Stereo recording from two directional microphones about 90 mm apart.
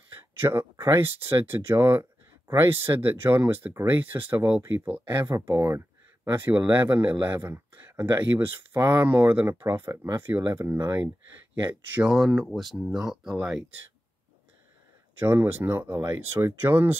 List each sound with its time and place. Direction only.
0.4 s speech: 30° right (ahead or behind)
5.2 s speech: 35° right (ahead or behind)
6.2 s speech: 20° right (ahead or behind)
12.1 s speech: 10° right (ahead or behind)
15.1 s speech: 25° right (ahead or behind)